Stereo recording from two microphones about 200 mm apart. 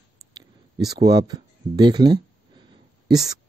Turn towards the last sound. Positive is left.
turn(degrees=-20)  # may be behind; listen again after turning